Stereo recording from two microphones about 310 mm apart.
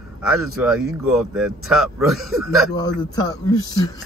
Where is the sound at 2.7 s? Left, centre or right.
Centre.